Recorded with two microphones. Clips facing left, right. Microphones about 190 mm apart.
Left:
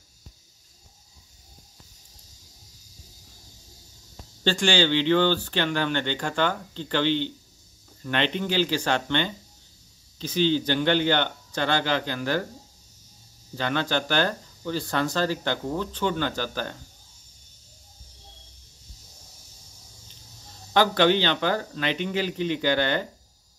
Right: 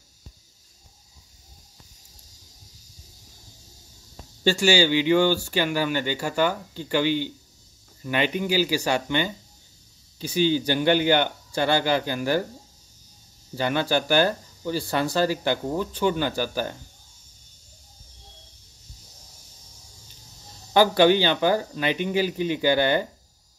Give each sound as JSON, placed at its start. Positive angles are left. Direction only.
{"t": 4.4, "sound": "speech", "side_deg": -10}
{"t": 13.6, "sound": "speech", "side_deg": -10}
{"t": 20.7, "sound": "speech", "side_deg": -10}